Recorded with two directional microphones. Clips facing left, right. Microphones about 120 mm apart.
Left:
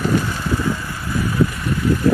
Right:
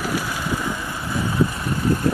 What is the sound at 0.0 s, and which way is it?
Vehicle, 10° right (ahead or behind).